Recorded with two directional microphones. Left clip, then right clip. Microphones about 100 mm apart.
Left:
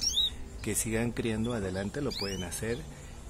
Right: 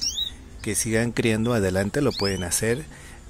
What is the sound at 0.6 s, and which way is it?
Speech, 30° right (ahead or behind).